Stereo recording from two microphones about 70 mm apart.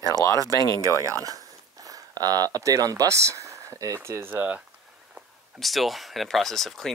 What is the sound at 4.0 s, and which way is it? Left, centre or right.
Speech, right.